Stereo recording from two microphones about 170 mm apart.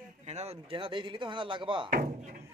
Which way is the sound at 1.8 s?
55° right (ahead or behind).